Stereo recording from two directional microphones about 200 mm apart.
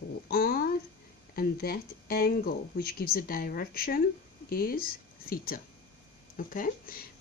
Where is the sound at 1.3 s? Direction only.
50° left (ahead or behind).